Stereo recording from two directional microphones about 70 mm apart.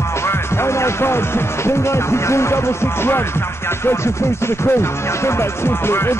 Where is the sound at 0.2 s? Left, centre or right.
Left.